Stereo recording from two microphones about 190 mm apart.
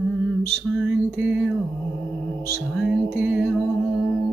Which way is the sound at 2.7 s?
Centre (ahead or behind).